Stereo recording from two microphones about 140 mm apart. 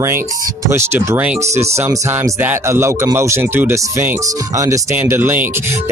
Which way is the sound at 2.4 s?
20° right (ahead or behind).